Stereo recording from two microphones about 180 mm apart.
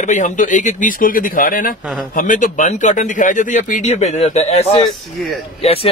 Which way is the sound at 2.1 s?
50° left (ahead or behind).